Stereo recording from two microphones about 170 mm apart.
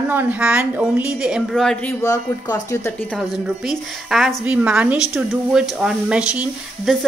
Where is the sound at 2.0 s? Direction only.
20° left (ahead or behind).